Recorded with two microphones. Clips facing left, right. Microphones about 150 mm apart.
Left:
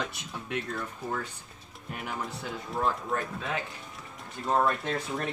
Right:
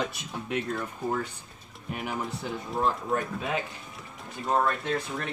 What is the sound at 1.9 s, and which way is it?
Speech, 15° right (ahead or behind).